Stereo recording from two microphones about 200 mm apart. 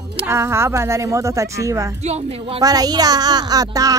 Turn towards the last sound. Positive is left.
turn(degrees=-20)  # may be behind; listen again after turning